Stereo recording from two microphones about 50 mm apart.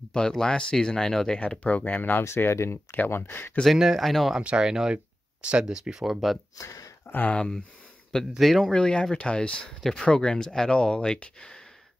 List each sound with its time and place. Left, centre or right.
0.1 s speech: centre
1.4 s speech: left
2.2 s speech: left
3.2 s speech: left
3.7 s speech: centre
4.4 s speech: centre
6.0 s speech: centre
7.1 s speech: left
7.3 s speech: centre
8.4 s speech: centre
8.7 s speech: centre
9.8 s speech: centre
10.0 s speech: centre